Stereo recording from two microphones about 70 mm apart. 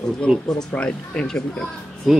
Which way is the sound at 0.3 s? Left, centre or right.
Centre.